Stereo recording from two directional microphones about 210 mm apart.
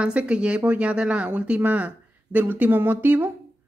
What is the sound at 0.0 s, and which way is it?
Speech, 5° right (ahead or behind).